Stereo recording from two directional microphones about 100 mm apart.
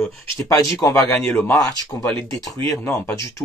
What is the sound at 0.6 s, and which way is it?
Speech, 30° left (ahead or behind).